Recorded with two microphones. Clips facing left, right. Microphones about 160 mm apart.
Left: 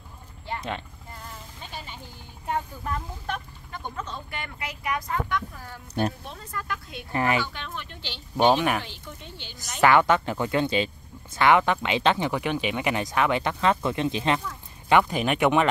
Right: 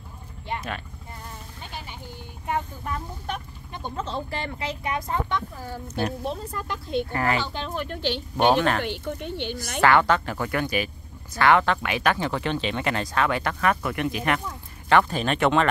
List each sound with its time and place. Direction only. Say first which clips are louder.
3.7 s speech: right 4 dB; 25° right (ahead or behind)
7.1 s speech: left 4 dB; 20° left (ahead or behind)
7.3 s speech: right 2 dB; 30° right (ahead or behind); by 8.2 s 50° right (ahead or behind)
8.5 s speech: right 2 dB; 15° left (ahead or behind)
8.8 s speech: right 12 dB; 60° right (ahead or behind)
9.6 s speech: left 1 dB; 20° left (ahead or behind)